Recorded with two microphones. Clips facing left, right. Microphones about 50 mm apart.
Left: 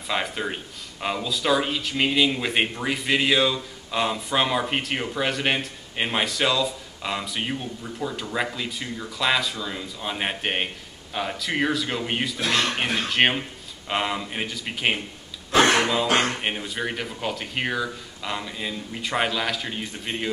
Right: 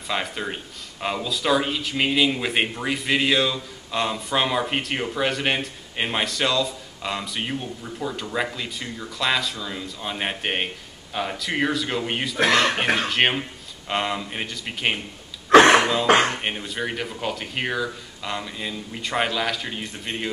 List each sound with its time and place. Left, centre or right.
0.1 s speech: centre
15.5 s a sound: right
16.2 s speech: centre